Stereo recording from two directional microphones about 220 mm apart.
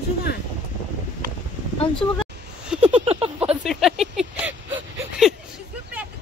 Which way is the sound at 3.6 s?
Centre (ahead or behind).